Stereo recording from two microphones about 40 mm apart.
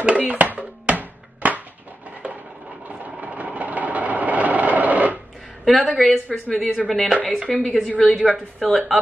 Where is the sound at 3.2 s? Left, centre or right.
Right.